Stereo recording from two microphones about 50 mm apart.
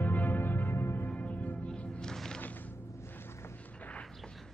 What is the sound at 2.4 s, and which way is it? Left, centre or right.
Music, left.